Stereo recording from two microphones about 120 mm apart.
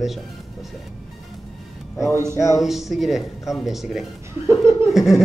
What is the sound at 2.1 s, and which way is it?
Speech, 25° right (ahead or behind).